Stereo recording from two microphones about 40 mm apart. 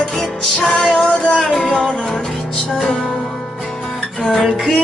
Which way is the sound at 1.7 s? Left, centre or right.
Centre.